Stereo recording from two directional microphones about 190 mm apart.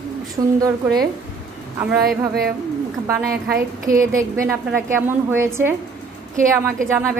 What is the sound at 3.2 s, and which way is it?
A woman's voice, 50° right (ahead or behind).